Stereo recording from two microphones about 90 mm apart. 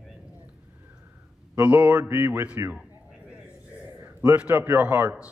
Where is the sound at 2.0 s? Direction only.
25° right (ahead or behind).